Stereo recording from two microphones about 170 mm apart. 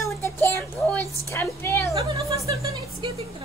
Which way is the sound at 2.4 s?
20° right (ahead or behind).